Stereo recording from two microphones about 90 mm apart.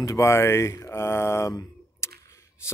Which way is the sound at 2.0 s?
30° left (ahead or behind).